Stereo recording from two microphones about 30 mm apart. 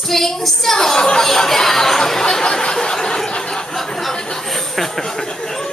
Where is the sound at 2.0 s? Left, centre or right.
Centre.